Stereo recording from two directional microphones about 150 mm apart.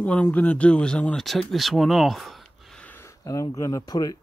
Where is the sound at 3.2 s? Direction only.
20° left (ahead or behind).